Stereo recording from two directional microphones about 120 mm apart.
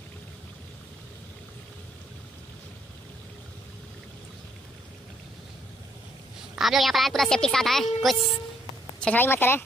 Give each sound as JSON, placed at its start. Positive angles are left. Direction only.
{"t": 6.5, "sound": "a woman's voice", "side_deg": 0}
{"t": 9.0, "sound": "a woman's voice", "side_deg": 15}